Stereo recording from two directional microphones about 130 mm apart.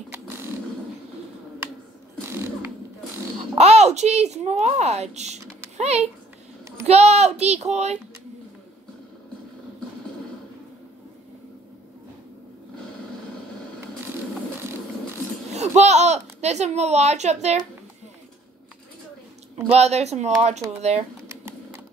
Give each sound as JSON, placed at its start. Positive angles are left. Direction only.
{"t": 3.5, "sound": "a child's voice", "side_deg": -55}
{"t": 15.5, "sound": "speech", "side_deg": -60}
{"t": 19.5, "sound": "speech", "side_deg": -55}
{"t": 21.3, "sound": "typewriter", "side_deg": -20}